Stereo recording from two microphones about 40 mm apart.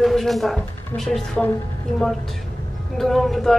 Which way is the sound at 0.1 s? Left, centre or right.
Centre.